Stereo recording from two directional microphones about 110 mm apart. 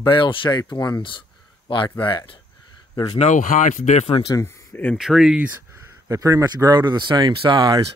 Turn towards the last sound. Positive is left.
turn(degrees=-40)  # may be behind; listen again after turning